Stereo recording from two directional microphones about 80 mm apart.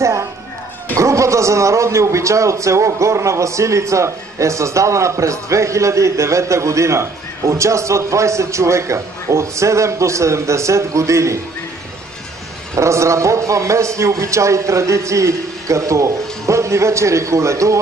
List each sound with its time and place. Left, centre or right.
0.0 s a sound: right
0.9 s a man's voice: right
12.7 s a man's voice: right